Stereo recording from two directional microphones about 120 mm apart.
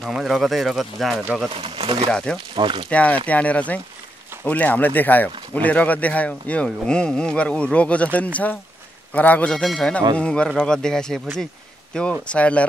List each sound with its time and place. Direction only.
0.0 s speech: centre (ahead or behind)
1.6 s speech: 50° right (ahead or behind)
2.0 s speech: 5° left (ahead or behind)
2.5 s speech: 45° right (ahead or behind)
2.9 s speech: 10° left (ahead or behind)